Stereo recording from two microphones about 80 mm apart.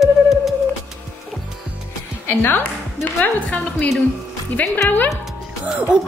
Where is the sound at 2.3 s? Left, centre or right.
Left.